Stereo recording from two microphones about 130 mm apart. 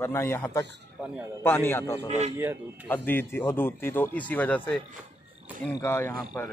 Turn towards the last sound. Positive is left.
turn(degrees=15)  # may be behind; listen again after turning